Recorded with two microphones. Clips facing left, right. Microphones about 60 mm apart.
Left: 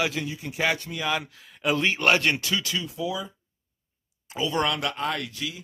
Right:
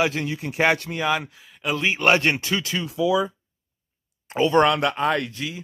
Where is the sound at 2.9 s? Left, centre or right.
Right.